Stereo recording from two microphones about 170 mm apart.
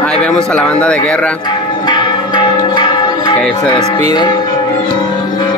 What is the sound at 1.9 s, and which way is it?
Music, 25° left (ahead or behind).